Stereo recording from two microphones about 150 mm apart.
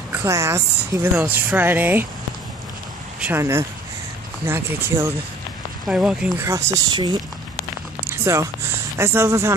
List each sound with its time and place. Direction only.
0.1 s a woman's voice: 20° right (ahead or behind)
3.2 s speech: 15° right (ahead or behind)
5.9 s speech: 5° right (ahead or behind)
6.4 s speech: 25° right (ahead or behind)
8.1 s a sound: 20° right (ahead or behind)
8.9 s speech: 15° right (ahead or behind)